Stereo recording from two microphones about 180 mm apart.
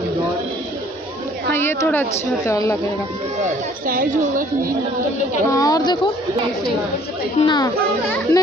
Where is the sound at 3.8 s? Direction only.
50° right (ahead or behind).